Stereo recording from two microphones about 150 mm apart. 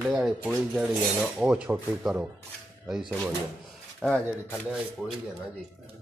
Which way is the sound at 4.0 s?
5° left (ahead or behind).